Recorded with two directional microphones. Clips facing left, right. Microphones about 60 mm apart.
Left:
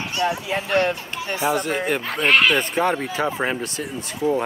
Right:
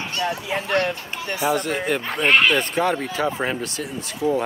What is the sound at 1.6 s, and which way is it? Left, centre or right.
Speech, centre.